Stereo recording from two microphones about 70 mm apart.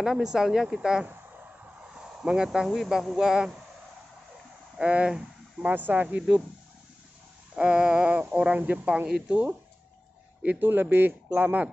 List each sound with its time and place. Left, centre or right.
0.0 s speech: centre
4.7 s speech: centre
7.5 s speech: centre
10.7 s speech: right